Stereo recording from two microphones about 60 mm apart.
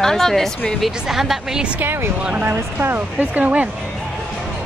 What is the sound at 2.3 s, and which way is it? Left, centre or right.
Speech, right.